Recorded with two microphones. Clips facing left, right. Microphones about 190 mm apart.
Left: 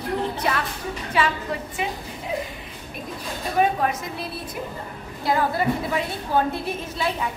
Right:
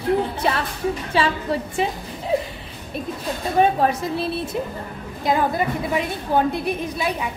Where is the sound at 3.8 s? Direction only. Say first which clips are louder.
Right 5 dB; 30° right (ahead or behind).